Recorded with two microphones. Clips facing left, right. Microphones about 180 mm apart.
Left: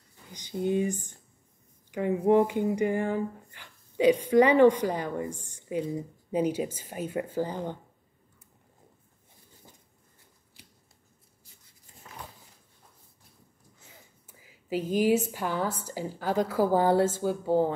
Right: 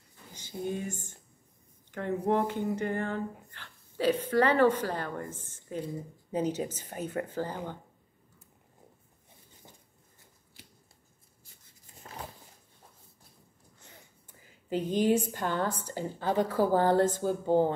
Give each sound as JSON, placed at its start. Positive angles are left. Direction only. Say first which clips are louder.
{"t": 0.3, "sound": "speech", "louder": "left 6 dB", "side_deg": 15}
{"t": 12.1, "sound": "a sound", "louder": "right 2 dB", "side_deg": -35}
{"t": 14.2, "sound": "speech", "louder": "left 1 dB", "side_deg": 5}